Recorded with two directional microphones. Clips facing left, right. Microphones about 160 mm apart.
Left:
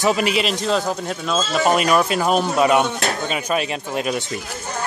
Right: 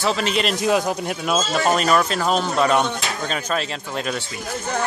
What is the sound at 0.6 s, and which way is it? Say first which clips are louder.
Speech: right 1 dB; 10° right (ahead or behind).